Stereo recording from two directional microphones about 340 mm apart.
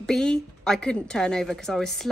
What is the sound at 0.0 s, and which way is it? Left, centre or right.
A woman's voice, centre.